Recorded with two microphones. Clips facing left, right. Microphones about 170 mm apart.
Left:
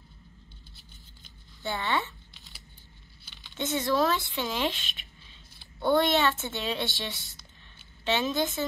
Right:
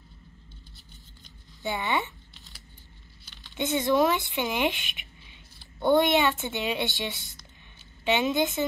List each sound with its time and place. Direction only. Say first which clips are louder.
1.6 s speech: right 1 dB; 20° right (ahead or behind)
3.5 s speech: right 3 dB; 20° right (ahead or behind)